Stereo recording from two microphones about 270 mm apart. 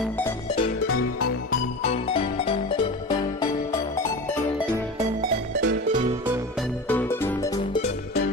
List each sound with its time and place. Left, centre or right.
0.8 s music: left
1.9 s music: left
6.9 s music: centre